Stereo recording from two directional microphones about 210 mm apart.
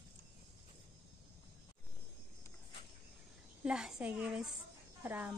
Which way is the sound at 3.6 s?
5° right (ahead or behind).